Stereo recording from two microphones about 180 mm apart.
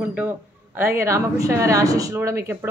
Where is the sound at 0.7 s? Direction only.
15° right (ahead or behind).